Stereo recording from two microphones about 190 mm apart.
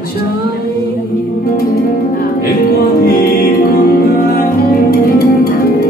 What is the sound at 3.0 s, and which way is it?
Music, 50° left (ahead or behind).